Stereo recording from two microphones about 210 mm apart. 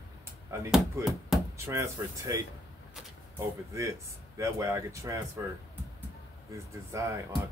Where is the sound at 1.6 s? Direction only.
15° right (ahead or behind).